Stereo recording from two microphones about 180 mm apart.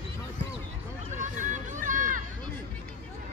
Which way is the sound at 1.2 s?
45° right (ahead or behind).